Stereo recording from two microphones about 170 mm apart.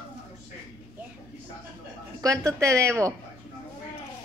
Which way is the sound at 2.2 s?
20° right (ahead or behind).